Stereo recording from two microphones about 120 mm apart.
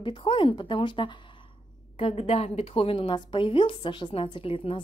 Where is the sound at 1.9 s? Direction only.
55° left (ahead or behind).